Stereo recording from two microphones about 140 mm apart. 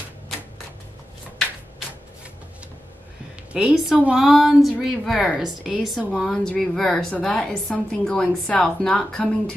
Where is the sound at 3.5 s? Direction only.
5° right (ahead or behind).